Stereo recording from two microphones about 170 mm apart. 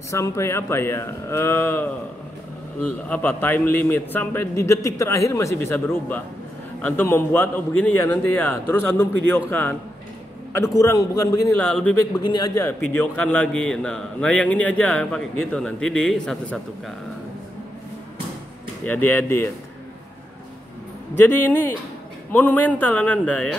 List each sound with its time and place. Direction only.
0.1 s a man's voice: 15° left (ahead or behind)
11.6 s a man's voice: 10° left (ahead or behind)
12.2 s a man's voice: 25° left (ahead or behind)
12.6 s a man's voice: 10° left (ahead or behind)
18.9 s a man's voice: 10° left (ahead or behind)
21.1 s a man's voice: 15° left (ahead or behind)